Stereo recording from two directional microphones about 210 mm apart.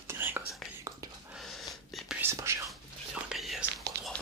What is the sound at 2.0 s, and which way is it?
Whispering, 10° right (ahead or behind).